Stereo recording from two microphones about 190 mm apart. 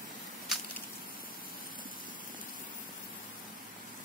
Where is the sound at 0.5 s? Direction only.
Centre (ahead or behind).